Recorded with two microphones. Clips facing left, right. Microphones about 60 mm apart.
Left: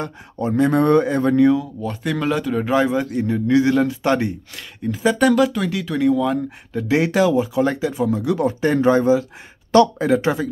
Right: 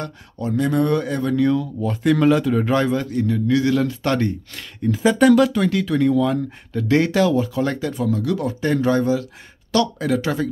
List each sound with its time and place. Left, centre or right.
0.0 s speech: left
1.4 s a man's voice: centre
1.8 s a man's voice: centre
4.6 s speech: centre; by 10.3 s left